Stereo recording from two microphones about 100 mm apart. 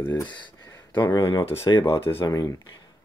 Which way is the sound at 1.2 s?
40° left (ahead or behind).